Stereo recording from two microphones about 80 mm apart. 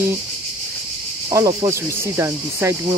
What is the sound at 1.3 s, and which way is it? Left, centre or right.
Speech, right.